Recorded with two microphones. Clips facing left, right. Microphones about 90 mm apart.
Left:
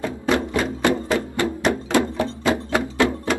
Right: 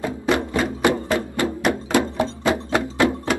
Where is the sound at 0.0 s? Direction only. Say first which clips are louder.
Even; 20° right (ahead or behind).